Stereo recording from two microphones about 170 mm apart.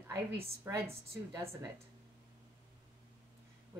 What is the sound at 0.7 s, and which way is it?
A woman's voice, 15° right (ahead or behind).